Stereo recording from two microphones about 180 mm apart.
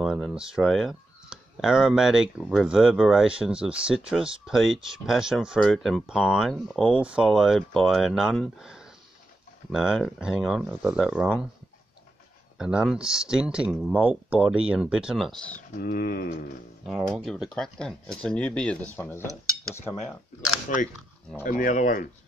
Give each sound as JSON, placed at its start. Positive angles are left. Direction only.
{"t": 0.0, "sound": "speech", "side_deg": 0}
{"t": 12.5, "sound": "speech", "side_deg": -5}
{"t": 15.5, "sound": "speech", "side_deg": 55}
{"t": 16.8, "sound": "speech", "side_deg": 0}
{"t": 18.9, "sound": "cutlery", "side_deg": 15}
{"t": 21.4, "sound": "speech", "side_deg": 50}